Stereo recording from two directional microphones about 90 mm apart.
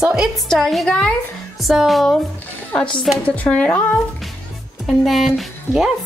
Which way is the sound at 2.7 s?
10° left (ahead or behind).